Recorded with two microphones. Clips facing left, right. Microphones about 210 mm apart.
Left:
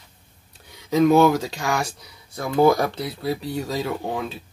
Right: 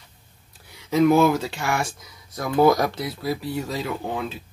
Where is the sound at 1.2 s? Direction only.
35° left (ahead or behind).